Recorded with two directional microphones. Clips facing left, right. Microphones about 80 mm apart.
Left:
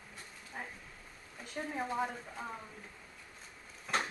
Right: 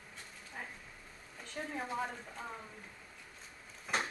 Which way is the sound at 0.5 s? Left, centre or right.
Centre.